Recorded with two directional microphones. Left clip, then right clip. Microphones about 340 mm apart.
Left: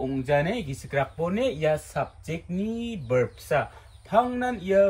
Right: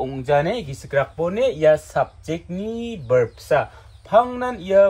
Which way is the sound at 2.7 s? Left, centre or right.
Right.